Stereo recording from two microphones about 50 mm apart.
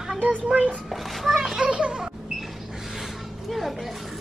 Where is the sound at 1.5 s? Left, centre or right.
Centre.